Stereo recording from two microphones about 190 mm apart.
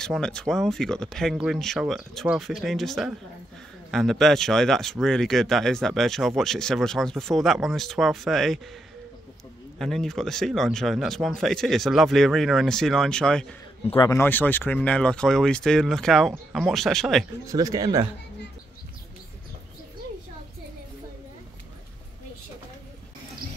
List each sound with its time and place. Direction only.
0.0 s speech: 5° left (ahead or behind)
9.8 s speech: centre (ahead or behind)
13.8 s speech: 20° left (ahead or behind); by 17.2 s centre (ahead or behind)
17.5 s speech: 20° right (ahead or behind)